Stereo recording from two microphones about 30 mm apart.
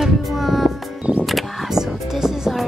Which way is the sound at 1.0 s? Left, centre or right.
Right.